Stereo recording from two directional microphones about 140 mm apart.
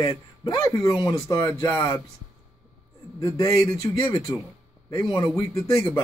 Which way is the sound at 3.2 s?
20° left (ahead or behind).